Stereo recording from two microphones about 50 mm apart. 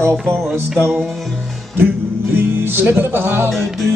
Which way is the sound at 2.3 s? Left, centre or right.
Right.